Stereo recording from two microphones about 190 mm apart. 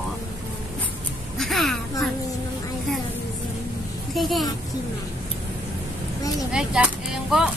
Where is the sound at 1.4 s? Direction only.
Centre (ahead or behind).